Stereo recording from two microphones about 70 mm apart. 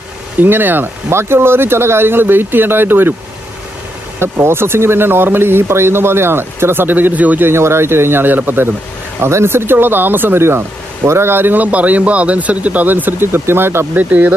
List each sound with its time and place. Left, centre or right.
0.4 s speech: right
4.2 s speech: right
7.4 s speech: right